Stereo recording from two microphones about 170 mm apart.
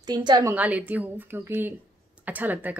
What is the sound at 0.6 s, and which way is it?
A woman's voice, 10° right (ahead or behind).